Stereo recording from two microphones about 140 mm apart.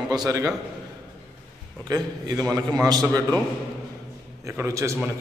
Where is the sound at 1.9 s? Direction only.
30° right (ahead or behind).